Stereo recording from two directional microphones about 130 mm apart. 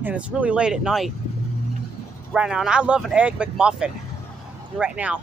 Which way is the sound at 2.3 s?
5° right (ahead or behind).